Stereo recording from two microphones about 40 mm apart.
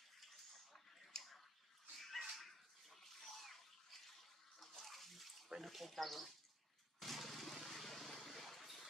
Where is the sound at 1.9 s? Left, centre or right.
Centre.